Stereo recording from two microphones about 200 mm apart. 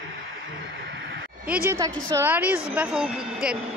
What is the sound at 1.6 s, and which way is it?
A woman's voice, 15° right (ahead or behind).